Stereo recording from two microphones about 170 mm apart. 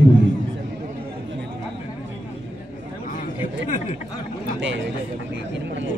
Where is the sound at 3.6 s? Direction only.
45° left (ahead or behind).